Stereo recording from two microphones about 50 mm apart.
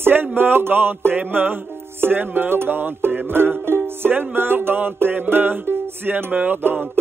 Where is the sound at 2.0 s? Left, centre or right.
Right.